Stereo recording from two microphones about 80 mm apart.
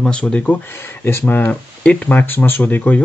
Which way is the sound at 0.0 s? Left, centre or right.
Centre.